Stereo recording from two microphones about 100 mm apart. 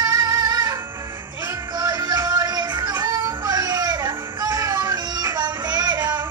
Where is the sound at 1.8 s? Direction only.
40° right (ahead or behind).